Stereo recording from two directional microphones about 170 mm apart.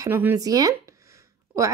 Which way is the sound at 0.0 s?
15° right (ahead or behind).